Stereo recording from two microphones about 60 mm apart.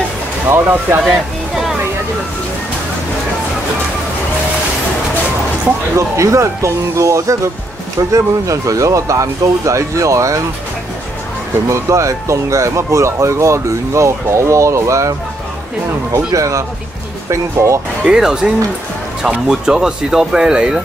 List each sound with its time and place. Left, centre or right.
0.5 s speech: right
1.0 s a sound: centre
5.9 s speech: right
11.7 s speech: right
16.3 s speech: right
18.0 s speech: centre